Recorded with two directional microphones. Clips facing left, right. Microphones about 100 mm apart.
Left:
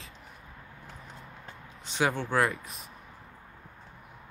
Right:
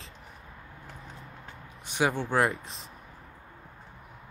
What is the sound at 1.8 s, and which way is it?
Speech, 15° right (ahead or behind).